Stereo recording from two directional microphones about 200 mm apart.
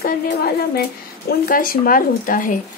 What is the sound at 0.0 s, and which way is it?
A woman's voice, 50° left (ahead or behind).